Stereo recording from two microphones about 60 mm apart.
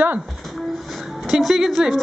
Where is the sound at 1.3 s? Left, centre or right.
Centre.